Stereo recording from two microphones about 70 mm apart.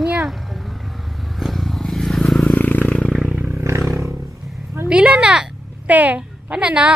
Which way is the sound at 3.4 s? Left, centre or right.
Right.